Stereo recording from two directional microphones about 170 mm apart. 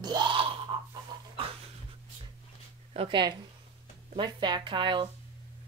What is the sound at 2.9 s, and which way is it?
Speech, 30° right (ahead or behind).